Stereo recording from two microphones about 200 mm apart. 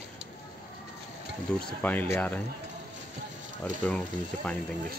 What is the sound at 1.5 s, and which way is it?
Speech, 5° left (ahead or behind).